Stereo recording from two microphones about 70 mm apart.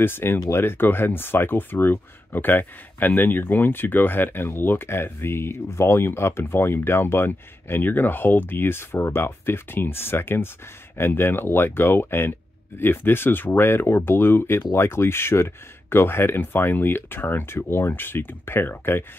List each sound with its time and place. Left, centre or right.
0.0 s speech: left